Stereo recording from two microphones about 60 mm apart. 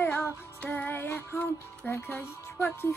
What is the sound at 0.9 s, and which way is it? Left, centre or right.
Music, left.